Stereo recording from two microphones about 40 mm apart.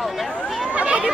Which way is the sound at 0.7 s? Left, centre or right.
Right.